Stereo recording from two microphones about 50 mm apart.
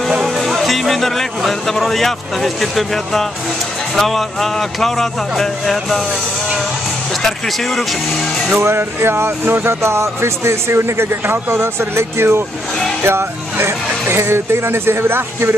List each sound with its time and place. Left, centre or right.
0.1 s speech: centre
7.2 s speech: centre
8.5 s a man's voice: right
9.8 s a man's voice: right